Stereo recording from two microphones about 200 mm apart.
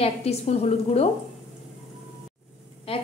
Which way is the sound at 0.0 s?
30° left (ahead or behind).